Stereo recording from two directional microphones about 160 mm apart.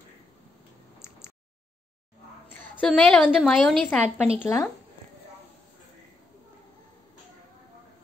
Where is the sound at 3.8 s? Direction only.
10° left (ahead or behind).